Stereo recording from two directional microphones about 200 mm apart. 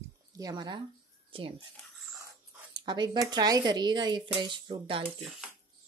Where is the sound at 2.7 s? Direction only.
20° right (ahead or behind).